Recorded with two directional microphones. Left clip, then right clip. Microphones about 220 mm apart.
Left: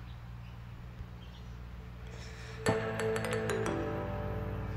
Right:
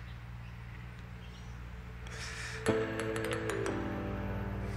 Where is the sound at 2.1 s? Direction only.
5° left (ahead or behind).